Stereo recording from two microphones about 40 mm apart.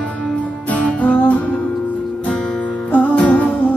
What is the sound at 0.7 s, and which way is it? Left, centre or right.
Music, left.